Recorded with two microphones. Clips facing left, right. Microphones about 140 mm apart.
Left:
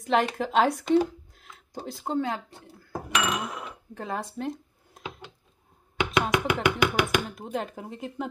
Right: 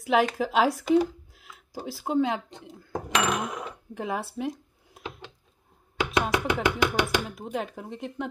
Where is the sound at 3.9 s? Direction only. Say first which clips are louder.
Right 2 dB; 10° right (ahead or behind).